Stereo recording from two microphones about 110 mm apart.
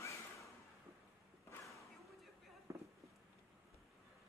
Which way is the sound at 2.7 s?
25° right (ahead or behind).